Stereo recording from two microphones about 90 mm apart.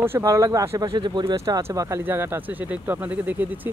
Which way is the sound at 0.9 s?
55° right (ahead or behind).